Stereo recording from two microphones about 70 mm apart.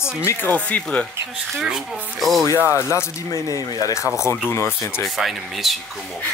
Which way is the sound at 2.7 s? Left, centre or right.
Left.